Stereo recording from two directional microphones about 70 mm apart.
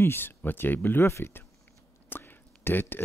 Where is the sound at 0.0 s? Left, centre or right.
Left.